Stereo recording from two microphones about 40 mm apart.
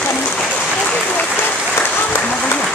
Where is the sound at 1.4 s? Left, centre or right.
Left.